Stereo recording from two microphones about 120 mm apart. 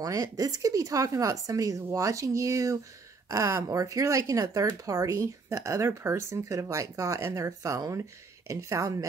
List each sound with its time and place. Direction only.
0.0 s speech: 30° right (ahead or behind)